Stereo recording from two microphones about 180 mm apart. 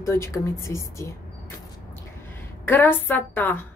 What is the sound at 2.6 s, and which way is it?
Speech, 10° left (ahead or behind).